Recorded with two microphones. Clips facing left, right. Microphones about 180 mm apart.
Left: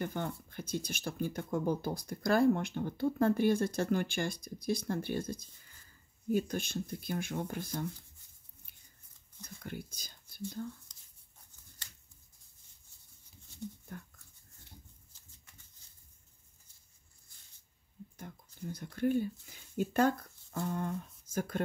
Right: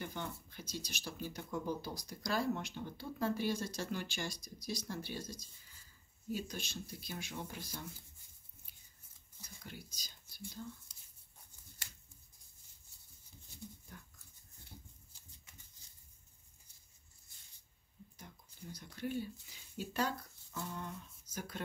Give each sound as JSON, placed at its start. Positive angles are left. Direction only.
{"t": 0.0, "sound": "speech", "side_deg": 50}
{"t": 9.6, "sound": "speech", "side_deg": 55}
{"t": 10.9, "sound": "writing", "side_deg": -10}
{"t": 18.1, "sound": "a sound", "side_deg": 55}